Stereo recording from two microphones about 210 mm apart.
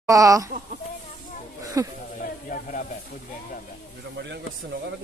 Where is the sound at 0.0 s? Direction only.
15° right (ahead or behind).